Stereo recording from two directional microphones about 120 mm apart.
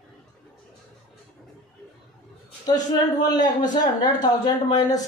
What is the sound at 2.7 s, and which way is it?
Speech, 35° left (ahead or behind).